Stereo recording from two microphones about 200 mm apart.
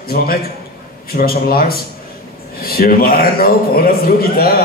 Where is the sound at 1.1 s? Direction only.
50° left (ahead or behind).